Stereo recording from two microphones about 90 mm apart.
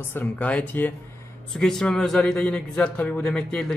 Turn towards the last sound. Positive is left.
turn(degrees=10)  # may be behind; listen again after turning